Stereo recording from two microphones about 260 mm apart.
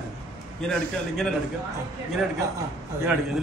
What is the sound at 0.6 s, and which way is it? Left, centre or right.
Speech, centre.